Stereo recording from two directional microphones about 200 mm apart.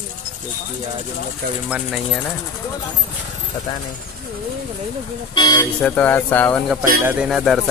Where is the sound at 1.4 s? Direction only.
50° right (ahead or behind).